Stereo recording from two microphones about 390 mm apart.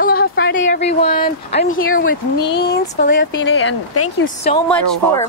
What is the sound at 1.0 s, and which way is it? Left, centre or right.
Speech, centre.